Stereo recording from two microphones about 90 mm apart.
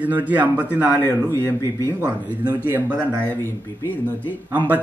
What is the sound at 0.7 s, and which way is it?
A man's voice, 25° left (ahead or behind).